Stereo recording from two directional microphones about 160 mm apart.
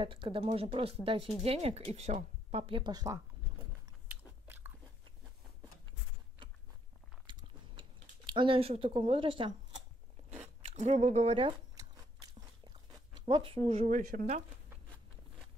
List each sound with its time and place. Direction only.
0.0 s speech: 35° right (ahead or behind)
7.2 s biting: 30° right (ahead or behind)
8.3 s speech: 30° right (ahead or behind)
10.4 s speech: 45° right (ahead or behind)
11.7 s crunch: 25° right (ahead or behind)
13.7 s speech: 45° right (ahead or behind)